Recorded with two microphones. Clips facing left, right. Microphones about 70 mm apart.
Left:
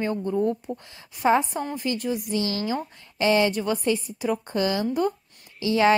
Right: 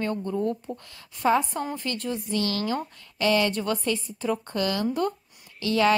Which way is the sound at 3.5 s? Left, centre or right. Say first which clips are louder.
Left 3 dB; centre.